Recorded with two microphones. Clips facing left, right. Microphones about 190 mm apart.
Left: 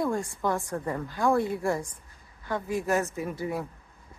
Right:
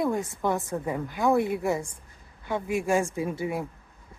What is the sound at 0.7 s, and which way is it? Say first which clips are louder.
Speech: right 2 dB; 5° right (ahead or behind).